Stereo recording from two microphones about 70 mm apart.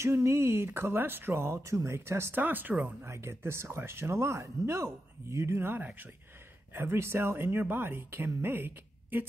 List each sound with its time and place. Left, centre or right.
0.0 s speech: right
2.4 s speech: right
3.1 s speech: right
5.8 s a woman's voice: right